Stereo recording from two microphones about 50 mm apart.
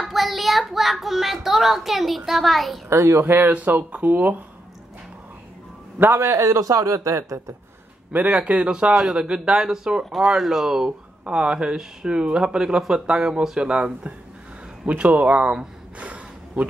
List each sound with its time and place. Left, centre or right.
0.0 s a child's voice: centre
2.9 s speech: right
3.3 s speech: right
3.5 s speech: right
6.1 s a man's voice: right
8.1 s speech: right
8.9 s speech: centre
9.3 s speech: centre
10.1 s a child's voice: centre
11.2 s speech: centre
14.9 s speech: right
16.0 s gasp: right